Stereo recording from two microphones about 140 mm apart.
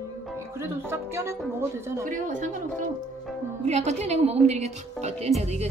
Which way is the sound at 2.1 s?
70° right (ahead or behind).